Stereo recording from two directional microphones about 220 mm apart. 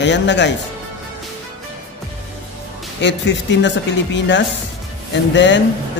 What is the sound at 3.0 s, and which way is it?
A woman's voice, 55° left (ahead or behind).